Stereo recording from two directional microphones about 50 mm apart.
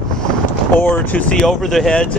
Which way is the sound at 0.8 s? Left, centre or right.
Left.